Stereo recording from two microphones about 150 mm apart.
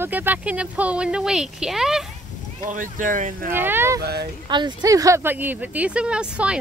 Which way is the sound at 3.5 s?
15° right (ahead or behind).